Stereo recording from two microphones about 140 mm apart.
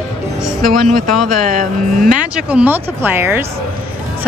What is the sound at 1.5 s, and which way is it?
Speech, 70° right (ahead or behind).